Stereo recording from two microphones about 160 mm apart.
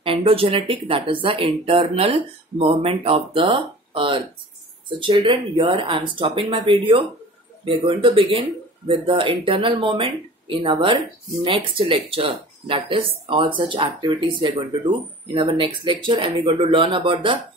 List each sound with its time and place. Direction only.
0.0 s speech: 35° right (ahead or behind)